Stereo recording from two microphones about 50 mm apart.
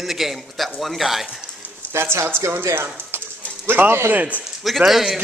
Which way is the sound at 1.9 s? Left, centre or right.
Right.